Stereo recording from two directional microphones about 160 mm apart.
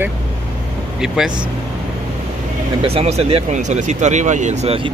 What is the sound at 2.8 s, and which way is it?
Speech, 40° right (ahead or behind).